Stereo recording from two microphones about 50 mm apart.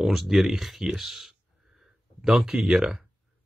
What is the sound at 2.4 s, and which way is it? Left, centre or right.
Speech, centre.